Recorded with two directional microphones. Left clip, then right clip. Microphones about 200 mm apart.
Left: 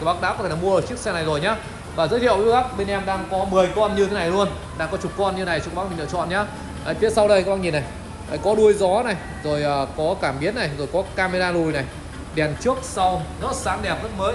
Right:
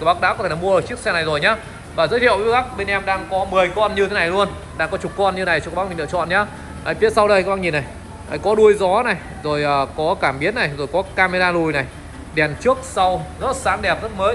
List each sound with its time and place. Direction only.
0.0 s speech: 15° left (ahead or behind)